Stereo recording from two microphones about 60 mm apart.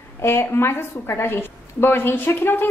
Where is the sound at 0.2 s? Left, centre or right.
Left.